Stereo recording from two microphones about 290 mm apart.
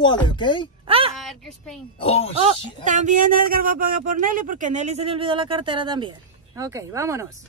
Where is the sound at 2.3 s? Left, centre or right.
Right.